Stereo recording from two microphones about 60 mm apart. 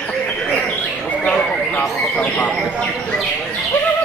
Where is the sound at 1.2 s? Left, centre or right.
Centre.